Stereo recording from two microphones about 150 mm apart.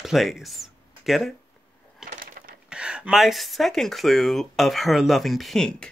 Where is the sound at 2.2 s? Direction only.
70° right (ahead or behind).